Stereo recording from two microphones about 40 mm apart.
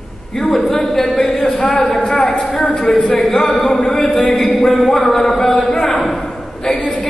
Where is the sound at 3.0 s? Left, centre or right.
Left.